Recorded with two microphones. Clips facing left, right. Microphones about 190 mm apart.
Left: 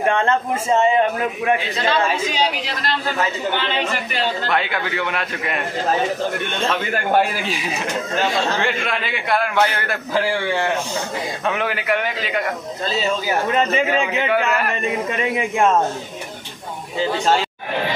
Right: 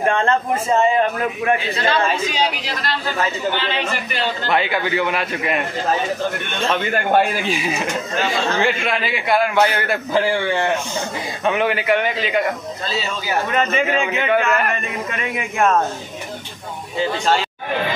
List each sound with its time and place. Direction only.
0.0 s a man's voice: 15° left (ahead or behind)
4.5 s a man's voice: centre (ahead or behind)
6.7 s a man's voice: centre (ahead or behind)
13.5 s speech: 30° left (ahead or behind)
14.3 s a man's voice: 5° left (ahead or behind)
15.0 s speech: 30° left (ahead or behind)